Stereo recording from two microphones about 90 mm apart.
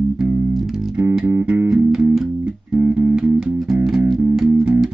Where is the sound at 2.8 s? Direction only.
20° right (ahead or behind).